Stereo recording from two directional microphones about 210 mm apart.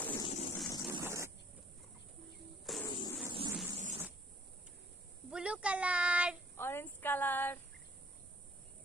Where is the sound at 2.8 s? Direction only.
20° left (ahead or behind).